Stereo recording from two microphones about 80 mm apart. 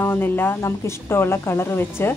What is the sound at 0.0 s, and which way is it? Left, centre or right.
Speech, left.